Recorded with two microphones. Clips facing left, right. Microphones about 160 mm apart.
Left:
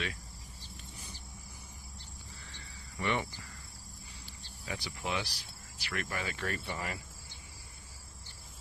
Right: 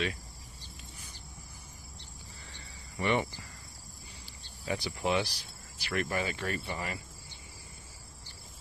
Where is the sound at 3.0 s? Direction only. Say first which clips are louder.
Right 4 dB; 20° right (ahead or behind).